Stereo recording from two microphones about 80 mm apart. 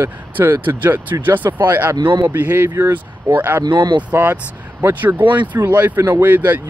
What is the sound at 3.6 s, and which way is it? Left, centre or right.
Speech, right.